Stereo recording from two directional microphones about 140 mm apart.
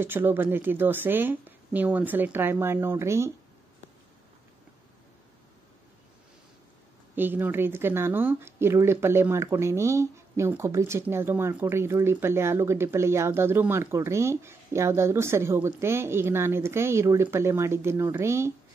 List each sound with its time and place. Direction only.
0.0 s speech: 15° right (ahead or behind)
7.2 s speech: 15° right (ahead or behind)